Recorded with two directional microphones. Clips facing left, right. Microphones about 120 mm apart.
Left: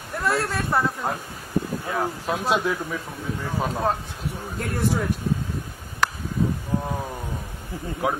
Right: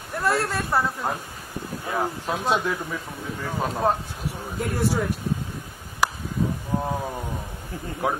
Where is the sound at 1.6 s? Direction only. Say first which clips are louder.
Left 9 dB; 50° left (ahead or behind).